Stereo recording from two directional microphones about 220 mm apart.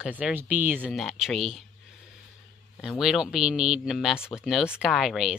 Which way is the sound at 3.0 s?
Centre (ahead or behind).